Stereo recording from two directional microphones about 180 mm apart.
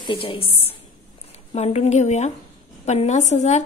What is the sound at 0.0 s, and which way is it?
A woman's voice, 30° left (ahead or behind).